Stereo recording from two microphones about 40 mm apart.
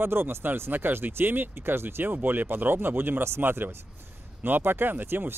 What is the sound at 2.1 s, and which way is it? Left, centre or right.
Speech, right.